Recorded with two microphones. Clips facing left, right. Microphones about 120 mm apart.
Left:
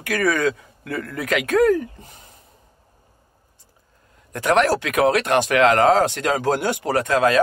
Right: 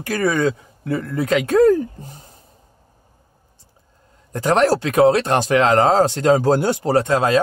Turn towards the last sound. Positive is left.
turn(degrees=-30)  # may be behind; listen again after turning